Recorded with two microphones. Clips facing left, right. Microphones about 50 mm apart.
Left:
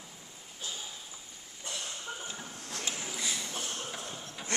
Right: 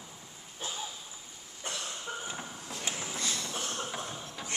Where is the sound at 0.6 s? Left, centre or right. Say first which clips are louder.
Right 2 dB; right.